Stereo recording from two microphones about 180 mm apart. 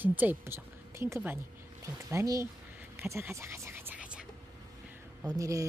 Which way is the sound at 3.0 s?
15° right (ahead or behind).